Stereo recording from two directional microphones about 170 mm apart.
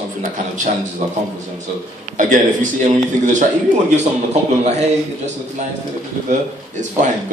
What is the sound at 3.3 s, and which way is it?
Speech, 45° right (ahead or behind).